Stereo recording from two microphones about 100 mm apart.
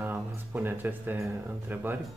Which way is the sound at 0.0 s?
20° right (ahead or behind).